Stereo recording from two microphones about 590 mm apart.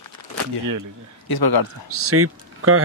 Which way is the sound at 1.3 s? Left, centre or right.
Left.